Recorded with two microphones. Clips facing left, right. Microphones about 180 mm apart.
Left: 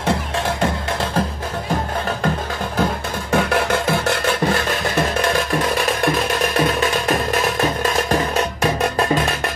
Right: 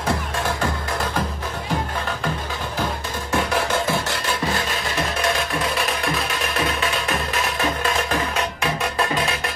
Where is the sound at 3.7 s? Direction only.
60° left (ahead or behind).